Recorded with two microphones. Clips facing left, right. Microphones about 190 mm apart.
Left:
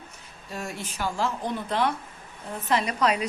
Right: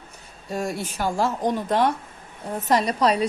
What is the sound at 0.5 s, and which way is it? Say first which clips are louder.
Speech: right 8 dB; 35° right (ahead or behind).